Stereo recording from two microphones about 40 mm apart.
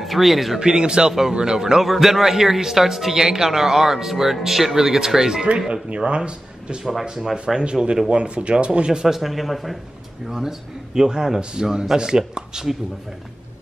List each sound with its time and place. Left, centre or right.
0.0 s speech: centre
0.6 s a man's voice: right
1.8 s a man's voice: centre
6.0 s speech: right
6.8 s a man's voice: centre
7.4 s speech: centre
9.0 s a man's voice: centre
11.0 s a man's voice: centre